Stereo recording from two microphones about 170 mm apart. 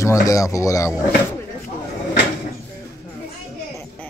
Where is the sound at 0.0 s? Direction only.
20° left (ahead or behind).